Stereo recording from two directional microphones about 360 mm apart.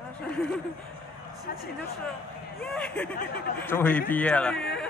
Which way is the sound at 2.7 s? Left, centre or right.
Centre.